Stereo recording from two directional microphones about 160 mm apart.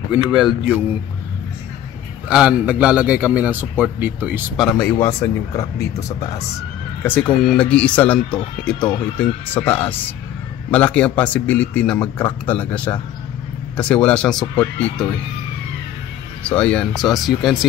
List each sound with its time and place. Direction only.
0.3 s speech: 5° right (ahead or behind)
2.2 s a man's voice: 5° right (ahead or behind)
4.6 s speech: 5° left (ahead or behind)
5.0 s speech: 20° left (ahead or behind)
10.7 s speech: 10° left (ahead or behind)
16.4 s speech: 5° left (ahead or behind)